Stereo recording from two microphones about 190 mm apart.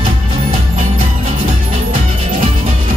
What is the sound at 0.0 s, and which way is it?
Music, 25° right (ahead or behind).